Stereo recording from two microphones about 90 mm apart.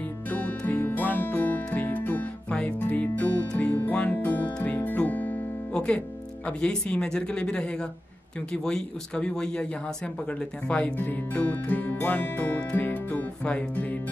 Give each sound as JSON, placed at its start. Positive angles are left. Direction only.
{"t": 0.3, "sound": "music", "side_deg": 15}
{"t": 8.5, "sound": "speech", "side_deg": 10}
{"t": 10.7, "sound": "speech", "side_deg": 15}